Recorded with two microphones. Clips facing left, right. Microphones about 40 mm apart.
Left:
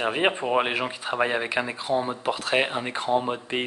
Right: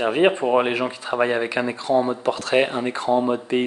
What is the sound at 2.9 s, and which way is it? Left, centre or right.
Speech, centre.